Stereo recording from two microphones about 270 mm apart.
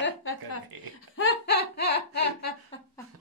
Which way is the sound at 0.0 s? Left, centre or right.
Left.